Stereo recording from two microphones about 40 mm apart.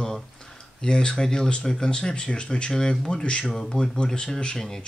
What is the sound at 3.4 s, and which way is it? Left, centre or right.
Speech, centre.